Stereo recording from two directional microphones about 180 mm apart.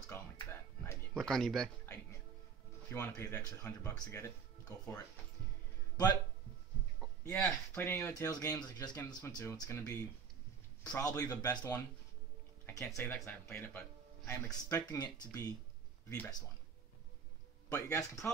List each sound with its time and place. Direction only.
0.1 s music: 10° left (ahead or behind)
1.1 s speech: 5° left (ahead or behind)
2.9 s speech: 10° left (ahead or behind)
7.2 s speech: 10° left (ahead or behind)
12.6 s speech: 15° left (ahead or behind)
17.6 s speech: 15° left (ahead or behind)